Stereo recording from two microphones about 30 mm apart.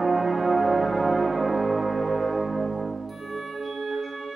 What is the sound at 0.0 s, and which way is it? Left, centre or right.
Music, centre.